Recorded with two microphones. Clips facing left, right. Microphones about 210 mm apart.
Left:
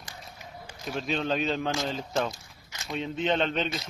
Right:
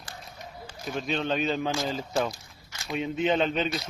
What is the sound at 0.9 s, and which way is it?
Speech, centre (ahead or behind).